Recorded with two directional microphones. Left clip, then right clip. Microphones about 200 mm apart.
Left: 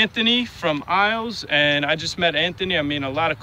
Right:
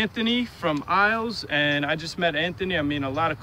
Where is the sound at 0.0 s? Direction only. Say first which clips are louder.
Left 6 dB; 30° left (ahead or behind).